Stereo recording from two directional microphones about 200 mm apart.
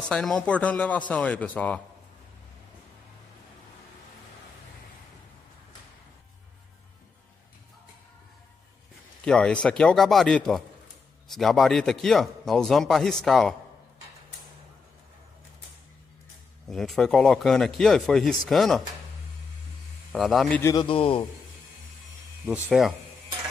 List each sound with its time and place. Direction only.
0.1 s speech: 5° left (ahead or behind)
9.2 s a man's voice: 5° left (ahead or behind)
16.6 s a man's voice: centre (ahead or behind)
20.1 s a man's voice: centre (ahead or behind)
20.6 s a man's voice: 25° left (ahead or behind)
22.5 s a man's voice: centre (ahead or behind)